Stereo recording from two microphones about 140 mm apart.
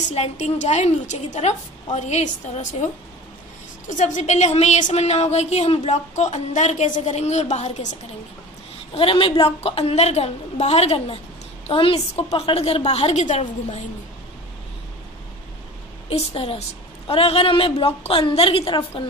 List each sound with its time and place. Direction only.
0.1 s a woman's voice: 55° left (ahead or behind)
3.9 s a woman's voice: 60° left (ahead or behind)
8.9 s a woman's voice: 40° left (ahead or behind); by 13.7 s 55° left (ahead or behind)
16.1 s a woman's voice: 45° left (ahead or behind)